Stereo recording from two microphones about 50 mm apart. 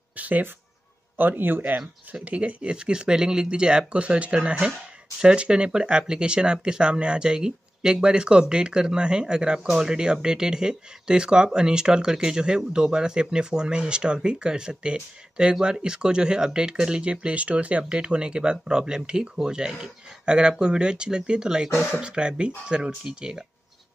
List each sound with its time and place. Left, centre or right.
0.1 s a man's voice: right
2.2 s speech: right